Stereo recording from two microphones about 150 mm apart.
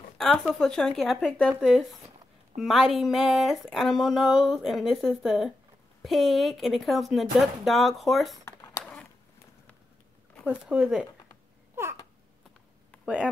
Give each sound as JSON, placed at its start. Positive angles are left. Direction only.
{"t": 0.2, "sound": "speech", "side_deg": 0}
{"t": 10.4, "sound": "speech", "side_deg": -5}
{"t": 11.7, "sound": "babbling", "side_deg": -15}
{"t": 13.0, "sound": "speech", "side_deg": -5}